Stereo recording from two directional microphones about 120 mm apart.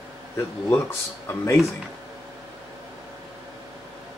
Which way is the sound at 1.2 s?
20° left (ahead or behind).